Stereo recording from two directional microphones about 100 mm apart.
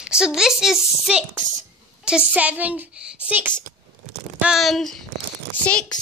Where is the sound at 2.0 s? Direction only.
10° right (ahead or behind).